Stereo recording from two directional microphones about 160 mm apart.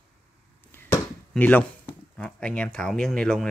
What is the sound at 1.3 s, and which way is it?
Speech, 10° left (ahead or behind).